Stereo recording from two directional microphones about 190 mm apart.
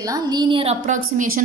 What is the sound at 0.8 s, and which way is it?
Speech, 40° right (ahead or behind).